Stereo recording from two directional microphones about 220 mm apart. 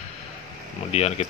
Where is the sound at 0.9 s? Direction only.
30° left (ahead or behind).